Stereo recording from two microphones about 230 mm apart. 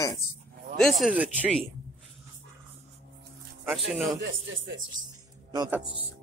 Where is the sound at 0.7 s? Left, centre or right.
Centre.